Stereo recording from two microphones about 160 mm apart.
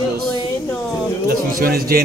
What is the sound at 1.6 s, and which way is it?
Speech, 65° right (ahead or behind).